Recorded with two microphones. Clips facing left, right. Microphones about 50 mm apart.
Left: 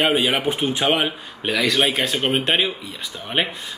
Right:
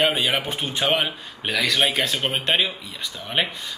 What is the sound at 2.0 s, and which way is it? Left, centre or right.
Speech, centre.